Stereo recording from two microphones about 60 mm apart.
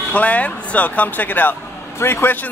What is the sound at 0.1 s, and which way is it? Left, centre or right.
Speech, left.